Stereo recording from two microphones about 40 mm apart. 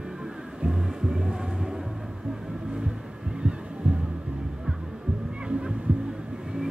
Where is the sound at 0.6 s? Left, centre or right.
Centre.